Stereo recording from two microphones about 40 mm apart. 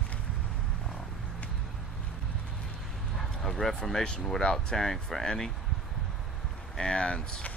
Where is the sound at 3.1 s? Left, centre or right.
Centre.